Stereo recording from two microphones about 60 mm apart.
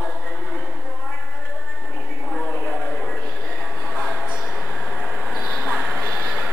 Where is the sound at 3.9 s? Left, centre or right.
Centre.